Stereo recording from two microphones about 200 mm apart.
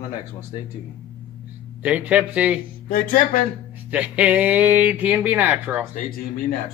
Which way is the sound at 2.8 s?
45° left (ahead or behind).